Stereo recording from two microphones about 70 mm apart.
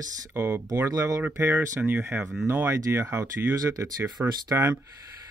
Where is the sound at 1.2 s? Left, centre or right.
Right.